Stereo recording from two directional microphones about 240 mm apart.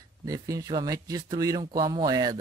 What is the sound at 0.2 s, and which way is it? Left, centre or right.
Speech, centre.